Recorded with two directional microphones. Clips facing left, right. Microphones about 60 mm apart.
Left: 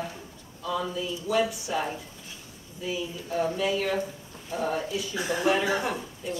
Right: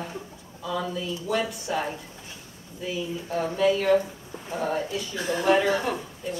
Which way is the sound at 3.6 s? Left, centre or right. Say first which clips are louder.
Right 6 dB; centre.